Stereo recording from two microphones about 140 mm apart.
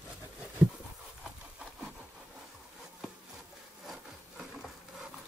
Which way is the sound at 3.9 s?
Centre (ahead or behind).